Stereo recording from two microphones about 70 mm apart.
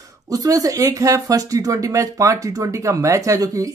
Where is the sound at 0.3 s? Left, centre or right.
Right.